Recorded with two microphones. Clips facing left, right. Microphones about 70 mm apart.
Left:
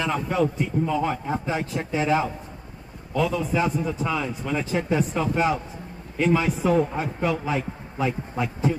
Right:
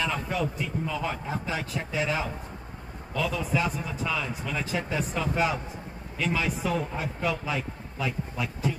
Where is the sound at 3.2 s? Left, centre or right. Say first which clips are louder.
Left 3 dB; left.